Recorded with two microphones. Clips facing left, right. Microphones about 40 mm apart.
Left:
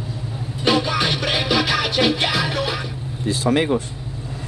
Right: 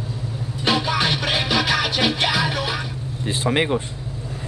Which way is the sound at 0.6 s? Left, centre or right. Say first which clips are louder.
Left 2 dB; centre.